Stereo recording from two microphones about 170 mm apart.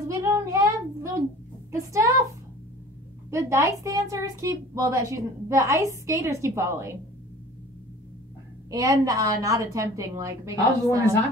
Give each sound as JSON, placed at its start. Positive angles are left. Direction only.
{"t": 0.2, "sound": "a sound", "side_deg": -15}
{"t": 1.7, "sound": "a woman's voice", "side_deg": -20}
{"t": 3.3, "sound": "a woman's voice", "side_deg": -15}
{"t": 8.6, "sound": "a woman's voice", "side_deg": -20}